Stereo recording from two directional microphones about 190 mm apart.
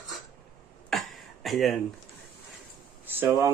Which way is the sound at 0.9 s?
Centre (ahead or behind).